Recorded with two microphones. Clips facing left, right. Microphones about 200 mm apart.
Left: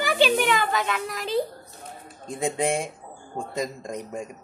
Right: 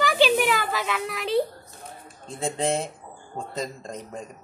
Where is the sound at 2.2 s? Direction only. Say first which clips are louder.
Left 1 dB; 15° left (ahead or behind).